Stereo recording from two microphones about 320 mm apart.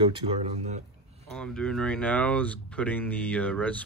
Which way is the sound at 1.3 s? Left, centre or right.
Centre.